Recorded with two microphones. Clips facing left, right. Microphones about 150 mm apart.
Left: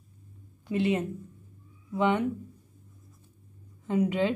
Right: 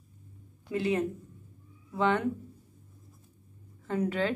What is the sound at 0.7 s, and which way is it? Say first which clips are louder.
A woman's voice: left 2 dB; 20° left (ahead or behind).